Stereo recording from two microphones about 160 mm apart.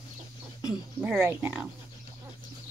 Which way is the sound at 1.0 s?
5° right (ahead or behind).